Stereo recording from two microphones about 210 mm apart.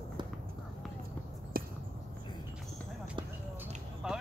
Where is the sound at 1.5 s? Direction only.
45° right (ahead or behind).